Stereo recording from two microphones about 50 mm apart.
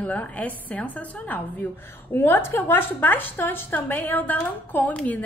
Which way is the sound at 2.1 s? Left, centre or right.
Left.